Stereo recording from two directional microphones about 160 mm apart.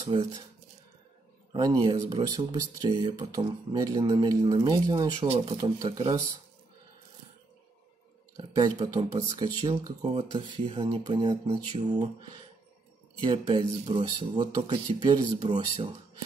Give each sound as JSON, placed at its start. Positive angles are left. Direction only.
{"t": 0.0, "sound": "speech", "side_deg": -30}
{"t": 1.5, "sound": "speech", "side_deg": -25}
{"t": 8.4, "sound": "speech", "side_deg": -30}
{"t": 13.2, "sound": "speech", "side_deg": -30}